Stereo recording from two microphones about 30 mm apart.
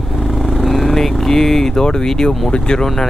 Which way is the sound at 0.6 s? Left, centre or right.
Centre.